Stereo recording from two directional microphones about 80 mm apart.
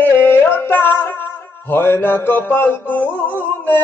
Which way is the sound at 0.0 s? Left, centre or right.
Left.